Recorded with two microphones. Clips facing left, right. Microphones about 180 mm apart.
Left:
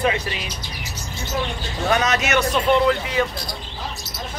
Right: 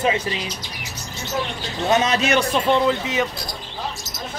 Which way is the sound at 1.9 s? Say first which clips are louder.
Right 2 dB; 30° right (ahead or behind).